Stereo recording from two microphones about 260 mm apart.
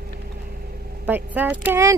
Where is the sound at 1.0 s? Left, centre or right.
Centre.